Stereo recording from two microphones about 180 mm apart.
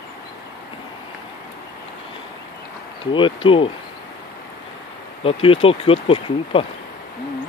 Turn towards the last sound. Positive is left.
turn(degrees=30)  # may be behind; listen again after turning